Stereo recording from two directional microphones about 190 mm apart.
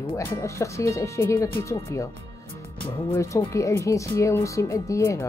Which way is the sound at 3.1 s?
15° left (ahead or behind).